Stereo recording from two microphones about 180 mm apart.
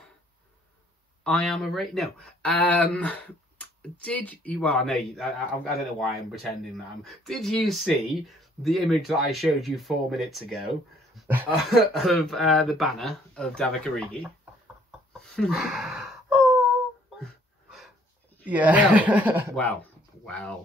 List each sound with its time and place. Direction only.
1.2 s speech: 5° left (ahead or behind)
14.9 s a sound: centre (ahead or behind)
18.4 s speech: 10° right (ahead or behind)
19.5 s speech: 10° left (ahead or behind)